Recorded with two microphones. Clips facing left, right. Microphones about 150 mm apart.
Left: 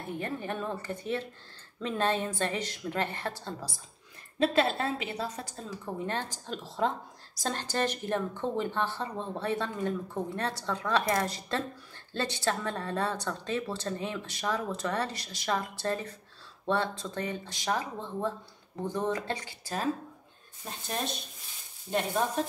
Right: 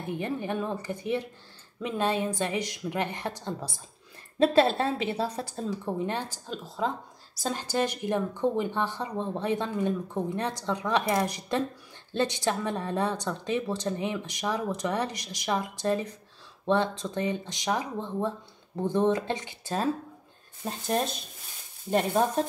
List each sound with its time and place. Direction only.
0.2 s a woman's voice: 15° right (ahead or behind)
4.4 s a woman's voice: 30° right (ahead or behind)
6.0 s a woman's voice: 10° right (ahead or behind)